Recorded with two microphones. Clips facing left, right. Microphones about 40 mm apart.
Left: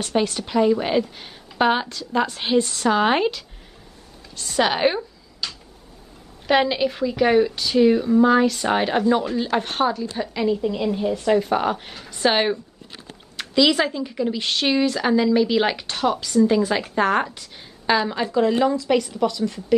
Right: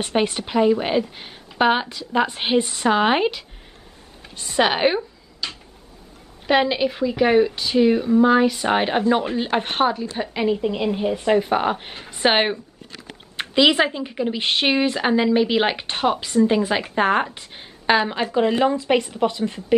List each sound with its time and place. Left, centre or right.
0.0 s a woman's voice: right